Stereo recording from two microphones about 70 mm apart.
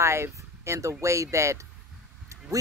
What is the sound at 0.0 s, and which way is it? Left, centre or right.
Speech, right.